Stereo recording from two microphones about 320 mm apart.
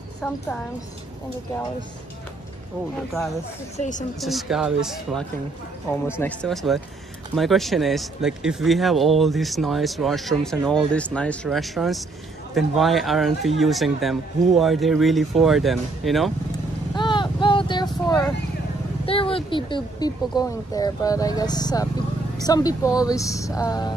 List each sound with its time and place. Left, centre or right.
0.2 s speech: centre
3.7 s a woman's voice: left
4.2 s speech: centre
16.9 s a sound: centre
19.0 s speech: centre